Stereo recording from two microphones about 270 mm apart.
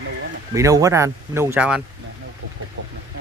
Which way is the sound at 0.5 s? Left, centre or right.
Centre.